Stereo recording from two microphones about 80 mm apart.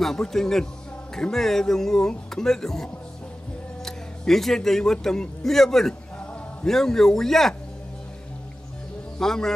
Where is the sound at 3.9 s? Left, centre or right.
Centre.